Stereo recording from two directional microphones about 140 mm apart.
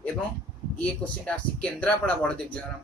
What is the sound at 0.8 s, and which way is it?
Speech, 10° left (ahead or behind).